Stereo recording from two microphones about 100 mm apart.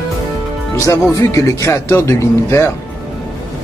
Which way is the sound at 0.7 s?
30° left (ahead or behind).